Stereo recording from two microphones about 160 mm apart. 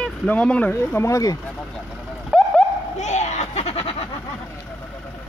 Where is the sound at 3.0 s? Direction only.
45° left (ahead or behind).